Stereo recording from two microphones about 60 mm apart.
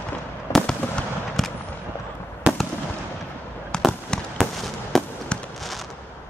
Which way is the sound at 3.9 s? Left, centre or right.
Centre.